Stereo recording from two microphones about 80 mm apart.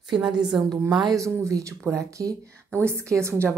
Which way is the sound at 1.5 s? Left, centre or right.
Right.